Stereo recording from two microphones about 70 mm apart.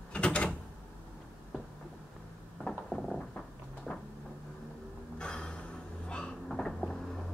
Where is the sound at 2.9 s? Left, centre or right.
Centre.